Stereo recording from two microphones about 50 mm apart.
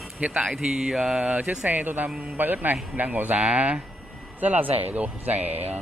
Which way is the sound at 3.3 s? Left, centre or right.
Right.